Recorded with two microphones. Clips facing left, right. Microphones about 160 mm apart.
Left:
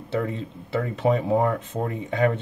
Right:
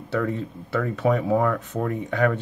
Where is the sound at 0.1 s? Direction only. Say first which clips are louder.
Right 1 dB; 20° left (ahead or behind).